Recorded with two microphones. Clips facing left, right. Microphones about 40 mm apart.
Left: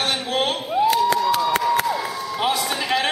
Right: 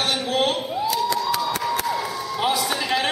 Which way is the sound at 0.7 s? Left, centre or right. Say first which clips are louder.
Left 5 dB; left.